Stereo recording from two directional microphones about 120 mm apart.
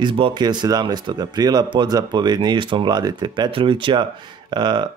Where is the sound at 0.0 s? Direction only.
40° right (ahead or behind).